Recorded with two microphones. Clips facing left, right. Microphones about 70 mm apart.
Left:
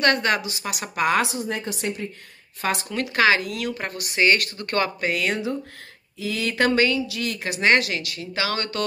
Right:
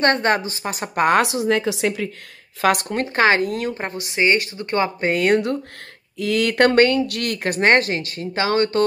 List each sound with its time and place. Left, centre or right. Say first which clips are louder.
0.0 s a woman's voice: right 3 dB; right
1.2 s a woman's voice: right 8 dB; right
2.6 s speech: right 7 dB; right
2.9 s a woman's voice: right 2 dB; right
3.7 s speech: right 2 dB; right
5.0 s speech: right 6 dB; right